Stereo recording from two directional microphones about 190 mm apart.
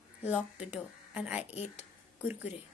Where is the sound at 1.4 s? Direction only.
35° left (ahead or behind).